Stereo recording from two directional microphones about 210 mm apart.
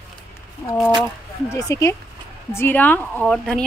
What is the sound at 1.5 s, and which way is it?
Speech, 15° left (ahead or behind).